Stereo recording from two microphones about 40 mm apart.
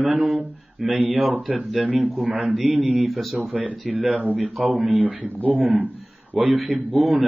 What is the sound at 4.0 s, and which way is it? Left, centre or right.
A man's voice, right.